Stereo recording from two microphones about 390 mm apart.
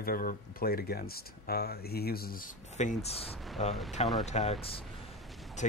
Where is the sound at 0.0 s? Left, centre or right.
Left.